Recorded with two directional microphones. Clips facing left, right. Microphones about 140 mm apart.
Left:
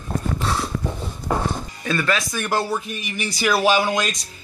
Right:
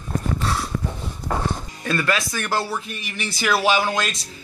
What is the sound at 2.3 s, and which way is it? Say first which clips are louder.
Speech: left 2 dB; 15° left (ahead or behind).